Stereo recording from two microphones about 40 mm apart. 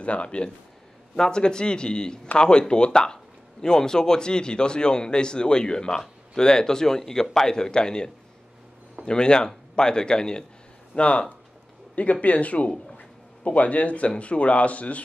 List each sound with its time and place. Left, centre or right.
0.0 s speech: left
1.1 s speech: centre; by 15.0 s left